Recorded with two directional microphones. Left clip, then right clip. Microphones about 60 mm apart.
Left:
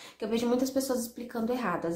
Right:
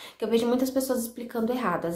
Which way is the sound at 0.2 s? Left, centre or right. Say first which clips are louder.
Right 4 dB; right.